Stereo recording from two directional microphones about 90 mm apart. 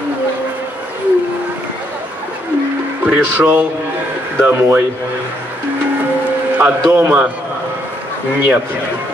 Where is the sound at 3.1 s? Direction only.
20° right (ahead or behind).